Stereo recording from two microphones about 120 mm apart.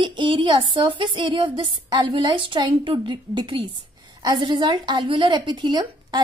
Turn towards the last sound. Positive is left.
turn(degrees=-40)  # may be behind; listen again after turning